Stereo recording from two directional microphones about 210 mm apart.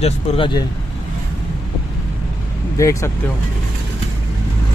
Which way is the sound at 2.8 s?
15° left (ahead or behind).